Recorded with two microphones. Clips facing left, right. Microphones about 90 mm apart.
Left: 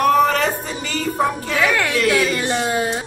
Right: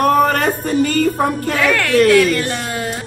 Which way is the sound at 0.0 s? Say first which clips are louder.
Right 2 dB; 45° right (ahead or behind).